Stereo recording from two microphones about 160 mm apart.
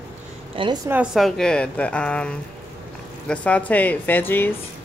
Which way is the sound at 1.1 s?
Centre (ahead or behind).